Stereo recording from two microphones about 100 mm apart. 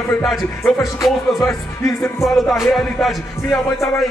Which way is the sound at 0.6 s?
35° left (ahead or behind).